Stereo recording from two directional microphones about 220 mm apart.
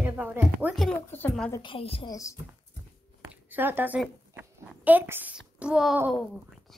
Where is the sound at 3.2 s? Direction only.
10° right (ahead or behind).